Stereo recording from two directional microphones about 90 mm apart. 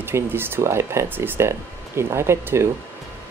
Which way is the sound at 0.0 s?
25° right (ahead or behind).